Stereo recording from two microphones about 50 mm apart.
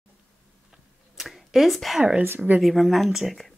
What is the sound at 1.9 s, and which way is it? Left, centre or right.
Speech, centre.